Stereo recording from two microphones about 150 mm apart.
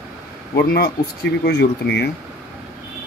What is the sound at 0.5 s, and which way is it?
Speech, 90° left.